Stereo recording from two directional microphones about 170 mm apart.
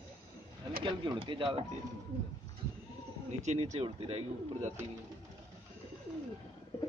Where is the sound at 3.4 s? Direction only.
40° right (ahead or behind).